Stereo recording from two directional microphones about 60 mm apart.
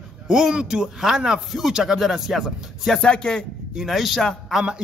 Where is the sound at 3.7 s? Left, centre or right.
Centre.